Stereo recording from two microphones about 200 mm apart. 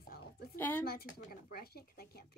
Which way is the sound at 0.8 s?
50° left (ahead or behind).